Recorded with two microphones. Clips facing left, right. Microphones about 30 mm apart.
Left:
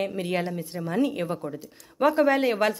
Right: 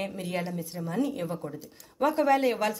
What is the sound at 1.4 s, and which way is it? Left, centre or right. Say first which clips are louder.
Speech: left 4 dB; centre.